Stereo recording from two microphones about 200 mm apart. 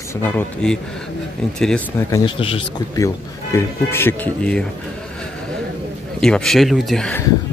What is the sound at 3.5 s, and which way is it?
Speech, 10° left (ahead or behind).